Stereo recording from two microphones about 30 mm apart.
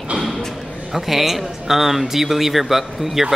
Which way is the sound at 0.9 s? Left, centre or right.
Centre.